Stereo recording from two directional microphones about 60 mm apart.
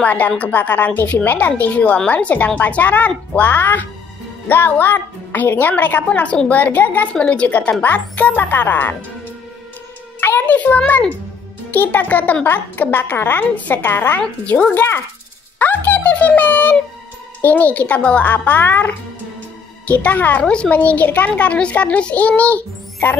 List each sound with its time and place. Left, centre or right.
0.0 s a child's voice: left
7.2 s a child's voice: centre
10.4 s a child's voice: left
13.4 s a woman's voice: left
15.6 s a child's voice: left